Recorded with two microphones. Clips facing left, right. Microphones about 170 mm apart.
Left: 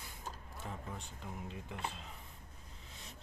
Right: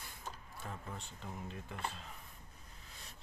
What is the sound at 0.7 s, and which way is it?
Speech, 15° left (ahead or behind).